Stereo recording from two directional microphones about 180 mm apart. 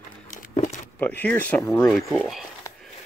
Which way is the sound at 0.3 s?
45° left (ahead or behind).